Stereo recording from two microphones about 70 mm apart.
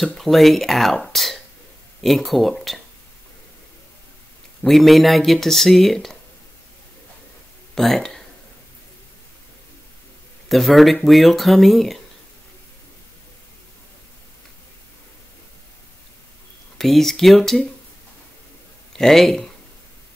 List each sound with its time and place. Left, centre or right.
0.0 s speech: centre
4.6 s speech: centre
7.7 s speech: centre
10.5 s speech: centre
16.7 s speech: centre
18.9 s speech: centre